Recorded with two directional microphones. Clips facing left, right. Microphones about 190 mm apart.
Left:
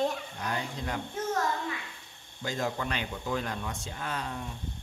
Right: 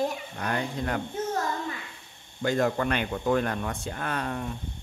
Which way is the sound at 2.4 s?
60° right (ahead or behind).